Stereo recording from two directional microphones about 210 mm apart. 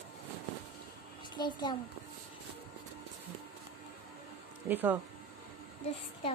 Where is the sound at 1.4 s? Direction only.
20° left (ahead or behind).